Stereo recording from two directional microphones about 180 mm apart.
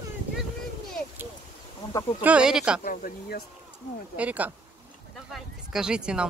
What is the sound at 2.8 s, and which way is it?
Speech, 50° left (ahead or behind).